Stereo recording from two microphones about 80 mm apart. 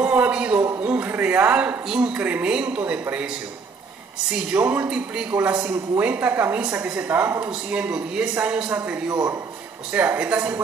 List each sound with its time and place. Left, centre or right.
0.0 s a sound: centre
0.7 s speech: right
4.3 s a woman's voice: centre
7.7 s a woman's voice: centre
9.1 s a man's voice: right
9.9 s speech: right